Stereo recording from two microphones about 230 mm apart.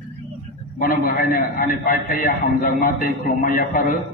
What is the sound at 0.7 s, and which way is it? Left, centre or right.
A man's voice, left.